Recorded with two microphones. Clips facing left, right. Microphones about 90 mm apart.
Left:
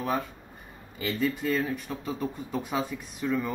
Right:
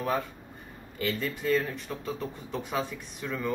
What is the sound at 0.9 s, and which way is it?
Speech, 5° left (ahead or behind).